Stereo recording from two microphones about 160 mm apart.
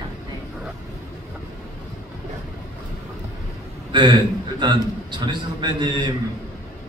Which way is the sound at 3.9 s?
30° right (ahead or behind).